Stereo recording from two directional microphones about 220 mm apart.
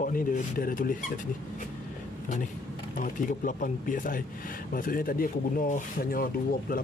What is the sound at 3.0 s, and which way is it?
Speech, 35° left (ahead or behind).